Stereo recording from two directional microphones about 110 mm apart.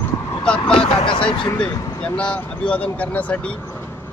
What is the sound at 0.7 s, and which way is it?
Speech, 55° left (ahead or behind).